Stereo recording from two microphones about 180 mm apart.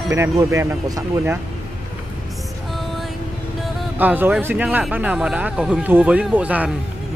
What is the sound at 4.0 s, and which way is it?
Speech, 10° right (ahead or behind).